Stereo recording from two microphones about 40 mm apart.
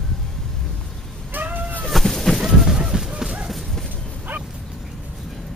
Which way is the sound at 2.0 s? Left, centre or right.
Centre.